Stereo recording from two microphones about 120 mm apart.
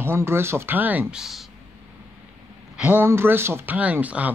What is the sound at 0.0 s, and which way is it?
Speech, 20° right (ahead or behind).